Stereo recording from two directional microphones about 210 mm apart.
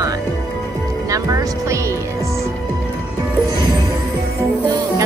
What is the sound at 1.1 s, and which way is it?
Speech, 15° right (ahead or behind).